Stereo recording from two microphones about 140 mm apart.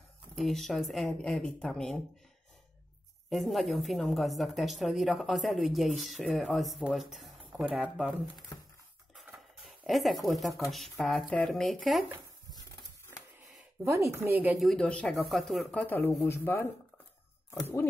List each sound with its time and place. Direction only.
0.4 s a woman's voice: centre (ahead or behind)
3.3 s a woman's voice: centre (ahead or behind)
9.1 s a sound: centre (ahead or behind)
10.7 s a woman's voice: centre (ahead or behind)
12.4 s a sound: 25° left (ahead or behind)
13.8 s speech: 20° right (ahead or behind)
14.6 s speech: 5° left (ahead or behind)